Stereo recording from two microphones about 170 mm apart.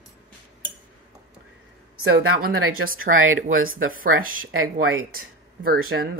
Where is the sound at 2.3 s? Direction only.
55° right (ahead or behind).